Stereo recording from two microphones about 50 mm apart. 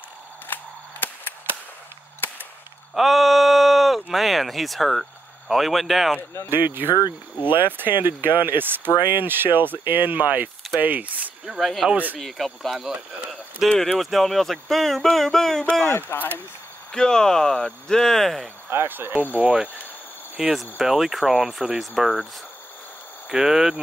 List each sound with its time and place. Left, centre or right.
0.5 s cap gun: left
2.9 s speech: centre
6.5 s speech: right
11.4 s speech: centre
13.7 s speech: centre
13.9 s speech: centre
16.1 s speech: left
16.9 s speech: centre
18.7 s speech: right
19.3 s speech: right
20.4 s speech: centre
23.2 s speech: centre